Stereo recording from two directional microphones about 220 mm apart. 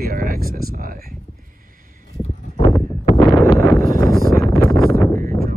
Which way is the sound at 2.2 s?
30° left (ahead or behind).